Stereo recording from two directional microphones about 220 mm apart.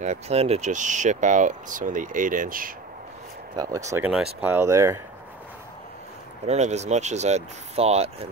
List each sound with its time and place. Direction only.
0.0 s speech: 30° right (ahead or behind)
3.5 s speech: 15° right (ahead or behind)
6.4 s speech: 30° right (ahead or behind)